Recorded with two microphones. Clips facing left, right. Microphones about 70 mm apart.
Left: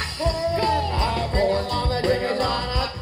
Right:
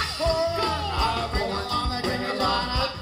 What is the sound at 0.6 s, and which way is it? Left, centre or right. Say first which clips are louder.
Music: left 3 dB; left.